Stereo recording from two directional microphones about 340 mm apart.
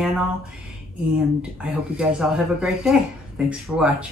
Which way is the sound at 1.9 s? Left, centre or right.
Centre.